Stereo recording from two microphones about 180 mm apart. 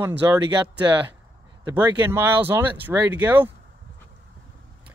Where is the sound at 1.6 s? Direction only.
20° right (ahead or behind).